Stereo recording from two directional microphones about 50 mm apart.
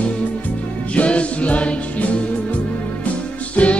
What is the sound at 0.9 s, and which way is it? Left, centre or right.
Music, left.